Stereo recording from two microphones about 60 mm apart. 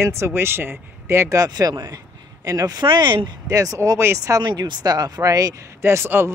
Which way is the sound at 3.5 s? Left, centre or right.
Right.